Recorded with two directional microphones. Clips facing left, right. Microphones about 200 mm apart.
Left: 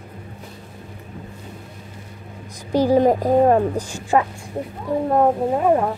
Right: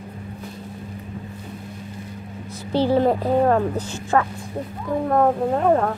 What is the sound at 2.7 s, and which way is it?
A woman's voice, 15° left (ahead or behind).